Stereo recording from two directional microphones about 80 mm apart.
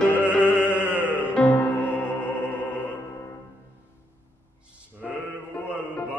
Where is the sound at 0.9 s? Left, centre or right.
Left.